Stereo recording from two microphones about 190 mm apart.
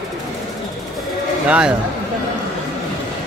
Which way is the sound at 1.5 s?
5° right (ahead or behind).